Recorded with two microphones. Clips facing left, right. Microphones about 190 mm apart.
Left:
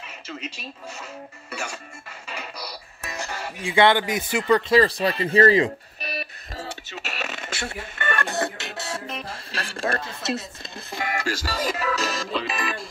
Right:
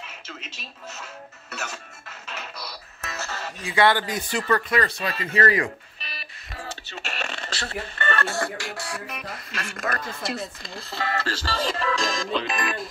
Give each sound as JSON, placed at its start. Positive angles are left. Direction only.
{"t": 1.5, "sound": "music", "side_deg": 10}
{"t": 3.6, "sound": "speech", "side_deg": 20}
{"t": 5.9, "sound": "a sound", "side_deg": 50}
{"t": 7.1, "sound": "speech", "side_deg": 5}